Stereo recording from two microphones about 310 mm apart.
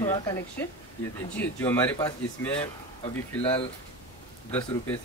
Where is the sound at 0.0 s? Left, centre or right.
Centre.